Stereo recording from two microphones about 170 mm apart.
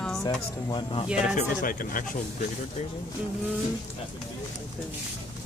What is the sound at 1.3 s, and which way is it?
Speech, 55° left (ahead or behind).